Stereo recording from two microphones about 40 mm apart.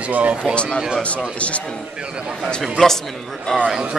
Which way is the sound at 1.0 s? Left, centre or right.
Left.